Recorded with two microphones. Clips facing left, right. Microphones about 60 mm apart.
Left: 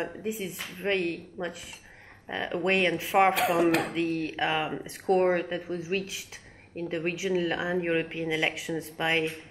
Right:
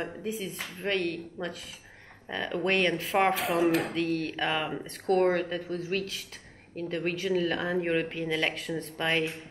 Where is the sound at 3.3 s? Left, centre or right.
Left.